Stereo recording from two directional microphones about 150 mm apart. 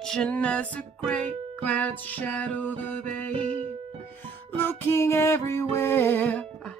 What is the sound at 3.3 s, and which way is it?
Music, 40° right (ahead or behind).